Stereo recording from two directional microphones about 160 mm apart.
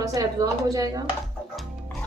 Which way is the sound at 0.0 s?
20° right (ahead or behind).